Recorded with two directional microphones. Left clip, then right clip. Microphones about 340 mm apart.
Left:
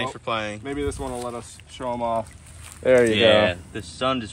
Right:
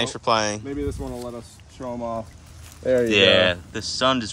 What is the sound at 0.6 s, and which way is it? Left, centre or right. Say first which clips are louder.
Speech: left 2 dB; centre.